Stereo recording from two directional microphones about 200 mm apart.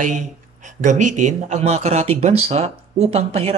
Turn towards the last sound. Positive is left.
turn(degrees=-30)  # may be behind; listen again after turning